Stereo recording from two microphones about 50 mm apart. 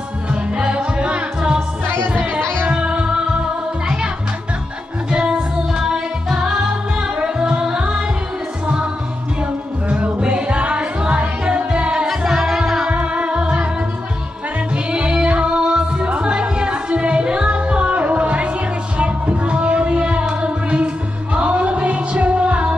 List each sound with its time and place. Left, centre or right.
0.3 s music: centre
1.9 s music: right
2.7 s music: right
5.8 s music: centre
9.8 s music: right
12.9 s music: right
14.9 s music: right